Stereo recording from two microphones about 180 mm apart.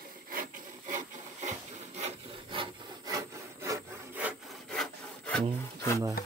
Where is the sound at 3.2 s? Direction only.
15° right (ahead or behind).